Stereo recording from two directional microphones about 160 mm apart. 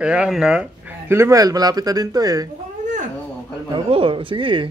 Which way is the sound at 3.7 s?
30° right (ahead or behind).